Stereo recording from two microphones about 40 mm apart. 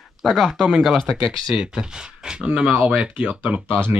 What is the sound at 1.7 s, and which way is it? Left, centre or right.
Speech, right.